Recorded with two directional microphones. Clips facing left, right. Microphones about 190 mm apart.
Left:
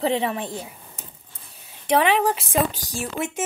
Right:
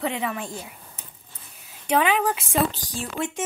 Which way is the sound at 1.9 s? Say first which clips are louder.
Left 2 dB; 35° left (ahead or behind).